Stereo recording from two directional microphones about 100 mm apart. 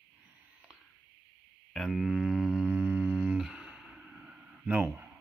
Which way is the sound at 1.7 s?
Centre (ahead or behind).